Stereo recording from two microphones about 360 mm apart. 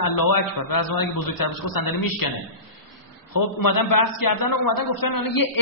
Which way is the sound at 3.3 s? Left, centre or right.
Left.